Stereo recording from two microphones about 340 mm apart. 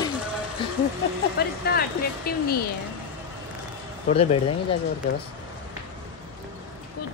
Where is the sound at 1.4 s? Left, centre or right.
Left.